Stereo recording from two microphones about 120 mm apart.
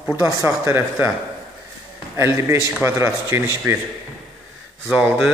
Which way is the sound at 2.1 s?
20° right (ahead or behind).